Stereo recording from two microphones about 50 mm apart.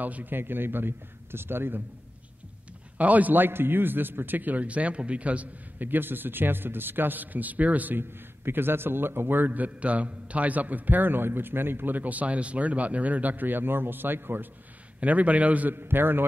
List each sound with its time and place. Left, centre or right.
0.0 s a man's voice: right
3.0 s a man's voice: right
8.0 s a man's voice: right
15.0 s a man's voice: right
15.7 s a man's voice: right